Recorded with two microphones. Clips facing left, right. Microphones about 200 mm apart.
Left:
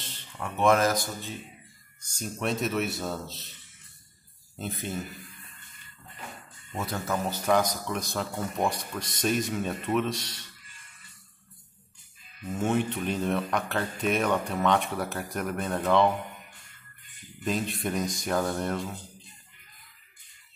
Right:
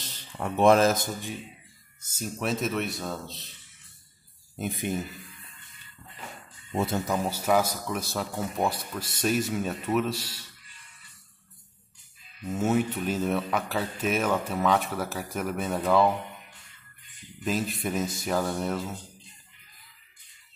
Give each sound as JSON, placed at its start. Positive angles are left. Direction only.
{"t": 0.0, "sound": "speech", "side_deg": -35}
{"t": 2.0, "sound": "speech", "side_deg": -5}
{"t": 4.6, "sound": "speech", "side_deg": -15}
{"t": 7.1, "sound": "speech", "side_deg": -10}
{"t": 12.4, "sound": "speech", "side_deg": -5}
{"t": 17.4, "sound": "speech", "side_deg": -5}